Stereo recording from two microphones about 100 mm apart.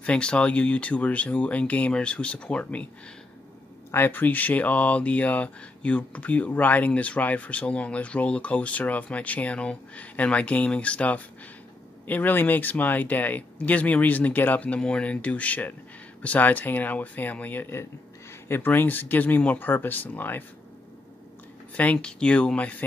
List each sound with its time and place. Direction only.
0.0 s speech: 10° left (ahead or behind)
3.9 s speech: 20° left (ahead or behind)
21.7 s speech: 10° left (ahead or behind)